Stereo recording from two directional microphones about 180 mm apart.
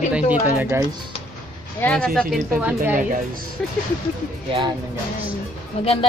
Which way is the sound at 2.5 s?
10° right (ahead or behind).